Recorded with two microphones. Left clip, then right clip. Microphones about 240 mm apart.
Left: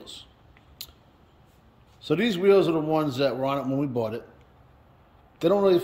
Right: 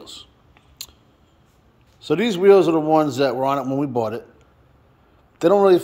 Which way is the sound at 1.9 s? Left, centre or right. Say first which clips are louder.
Right 5 dB; centre.